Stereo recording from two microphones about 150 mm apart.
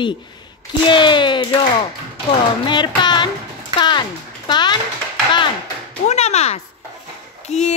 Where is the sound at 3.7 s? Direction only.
30° left (ahead or behind).